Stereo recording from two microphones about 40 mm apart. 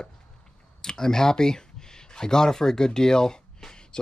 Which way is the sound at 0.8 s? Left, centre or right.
Centre.